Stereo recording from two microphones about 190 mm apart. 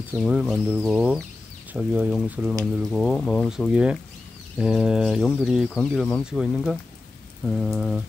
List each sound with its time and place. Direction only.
0.1 s speech: centre (ahead or behind)